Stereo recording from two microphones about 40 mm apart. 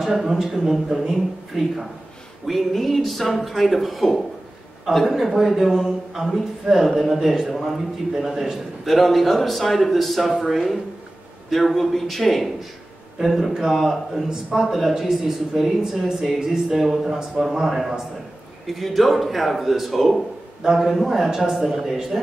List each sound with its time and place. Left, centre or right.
0.0 s speech: centre
8.8 s speech: centre
16.7 s speech: centre
21.2 s speech: centre